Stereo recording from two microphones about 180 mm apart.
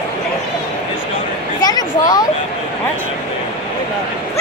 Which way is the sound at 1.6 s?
20° left (ahead or behind).